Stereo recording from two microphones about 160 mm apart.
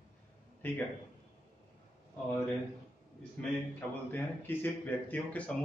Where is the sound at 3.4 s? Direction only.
10° left (ahead or behind).